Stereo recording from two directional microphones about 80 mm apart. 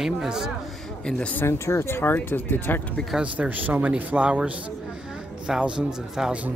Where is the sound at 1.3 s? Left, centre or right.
Left.